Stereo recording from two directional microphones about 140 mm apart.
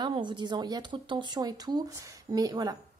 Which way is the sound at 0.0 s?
35° right (ahead or behind).